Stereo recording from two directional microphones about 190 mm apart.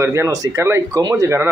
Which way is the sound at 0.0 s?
15° right (ahead or behind).